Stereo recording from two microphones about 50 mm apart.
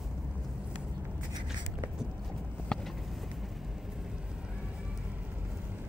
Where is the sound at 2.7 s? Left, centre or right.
Centre.